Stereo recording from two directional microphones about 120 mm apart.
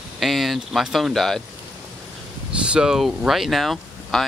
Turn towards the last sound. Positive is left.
turn(degrees=0)  # may be behind; listen again after turning